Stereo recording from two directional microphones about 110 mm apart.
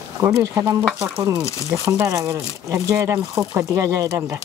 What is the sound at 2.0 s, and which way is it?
Speech, 35° right (ahead or behind).